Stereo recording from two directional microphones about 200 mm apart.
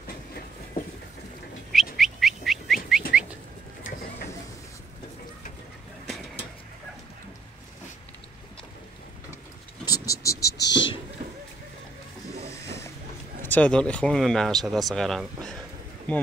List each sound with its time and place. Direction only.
1.7 s a sound: centre (ahead or behind)
9.8 s vehicle: 15° left (ahead or behind)
10.6 s whispering: 65° left (ahead or behind)
13.5 s speech: 5° left (ahead or behind)